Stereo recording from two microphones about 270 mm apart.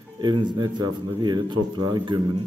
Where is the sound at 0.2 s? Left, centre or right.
Centre.